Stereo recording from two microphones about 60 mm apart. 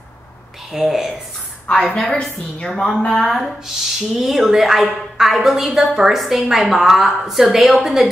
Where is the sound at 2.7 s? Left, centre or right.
Centre.